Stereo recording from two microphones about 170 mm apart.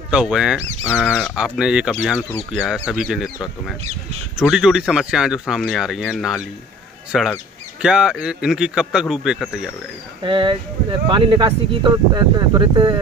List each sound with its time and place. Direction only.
0.1 s speech: 5° right (ahead or behind)
1.3 s speech: 5° right (ahead or behind)
4.4 s speech: 5° right (ahead or behind)
10.2 s speech: 30° right (ahead or behind)